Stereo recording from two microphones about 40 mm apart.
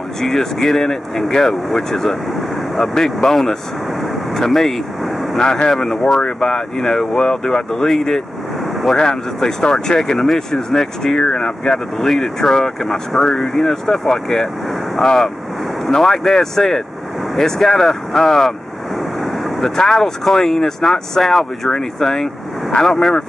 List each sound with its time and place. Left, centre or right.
0.2 s speech: centre
5.4 s speech: centre
19.6 s speech: centre